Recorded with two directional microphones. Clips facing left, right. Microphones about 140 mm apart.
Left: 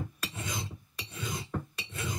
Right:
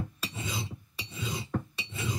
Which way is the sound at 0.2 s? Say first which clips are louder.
Right 1 dB; centre (ahead or behind).